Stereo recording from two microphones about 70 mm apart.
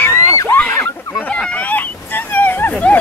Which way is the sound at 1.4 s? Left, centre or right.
Left.